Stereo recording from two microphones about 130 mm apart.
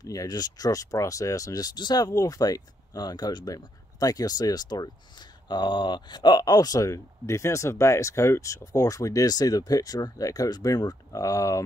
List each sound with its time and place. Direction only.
0.0 s speech: 30° left (ahead or behind)